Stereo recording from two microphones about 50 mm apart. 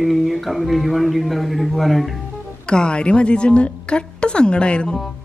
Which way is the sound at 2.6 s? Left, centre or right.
Centre.